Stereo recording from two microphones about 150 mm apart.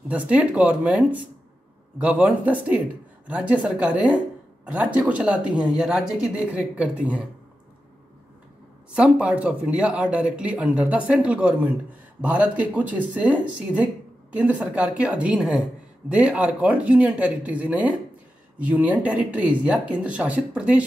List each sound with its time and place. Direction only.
0.1 s speech: 10° right (ahead or behind)
8.9 s speech: 10° right (ahead or behind)